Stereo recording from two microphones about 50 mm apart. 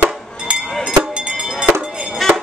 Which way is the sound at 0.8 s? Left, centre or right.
Centre.